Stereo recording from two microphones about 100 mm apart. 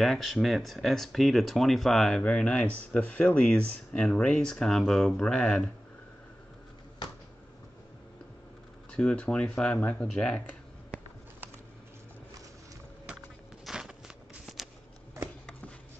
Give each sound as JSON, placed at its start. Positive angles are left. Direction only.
{"t": 0.0, "sound": "speech", "side_deg": 0}
{"t": 8.9, "sound": "speech", "side_deg": 10}
{"t": 13.7, "sound": "walk", "side_deg": -5}